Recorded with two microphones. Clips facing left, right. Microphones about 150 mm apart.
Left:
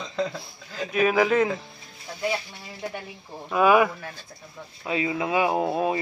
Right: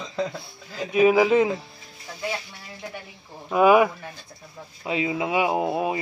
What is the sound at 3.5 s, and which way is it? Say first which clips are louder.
Speech: right 2 dB; 15° right (ahead or behind).